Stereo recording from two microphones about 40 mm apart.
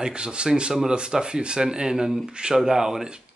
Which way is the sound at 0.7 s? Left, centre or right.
Centre.